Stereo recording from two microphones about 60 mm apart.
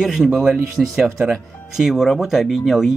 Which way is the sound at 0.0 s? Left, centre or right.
Centre.